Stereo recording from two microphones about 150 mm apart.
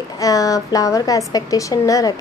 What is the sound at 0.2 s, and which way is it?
Speech, 25° left (ahead or behind).